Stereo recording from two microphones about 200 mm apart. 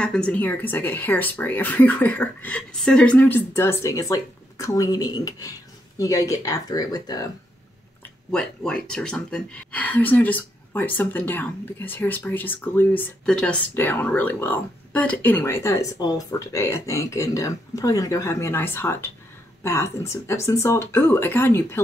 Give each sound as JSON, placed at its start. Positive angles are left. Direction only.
{"t": 0.0, "sound": "speech", "side_deg": 5}
{"t": 8.3, "sound": "speech", "side_deg": 5}